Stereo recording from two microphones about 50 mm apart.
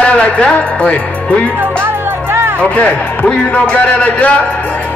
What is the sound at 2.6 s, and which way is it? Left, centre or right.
Speech, left.